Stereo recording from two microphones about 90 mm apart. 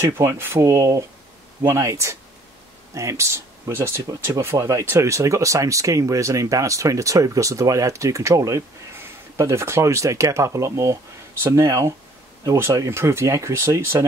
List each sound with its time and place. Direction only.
0.0 s speech: 30° right (ahead or behind)